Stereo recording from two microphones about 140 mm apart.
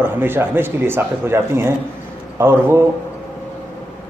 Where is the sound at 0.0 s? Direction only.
15° right (ahead or behind).